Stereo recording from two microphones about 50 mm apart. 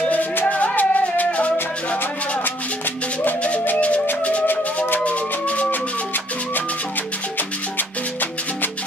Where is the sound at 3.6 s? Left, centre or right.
Left.